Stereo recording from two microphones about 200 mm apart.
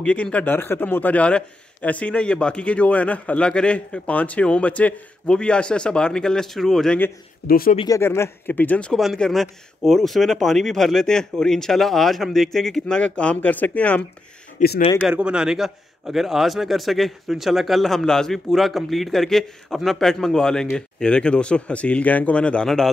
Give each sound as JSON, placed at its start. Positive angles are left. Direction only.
{"t": 0.0, "sound": "a man's voice", "side_deg": 5}
{"t": 7.4, "sound": "speech", "side_deg": 45}
{"t": 7.7, "sound": "speech", "side_deg": 20}
{"t": 8.0, "sound": "a man's voice", "side_deg": 10}
{"t": 14.6, "sound": "speech", "side_deg": 40}
{"t": 15.0, "sound": "a man's voice", "side_deg": -5}